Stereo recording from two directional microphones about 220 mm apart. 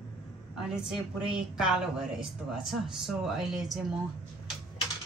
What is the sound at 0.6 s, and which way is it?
A woman's voice, 5° right (ahead or behind).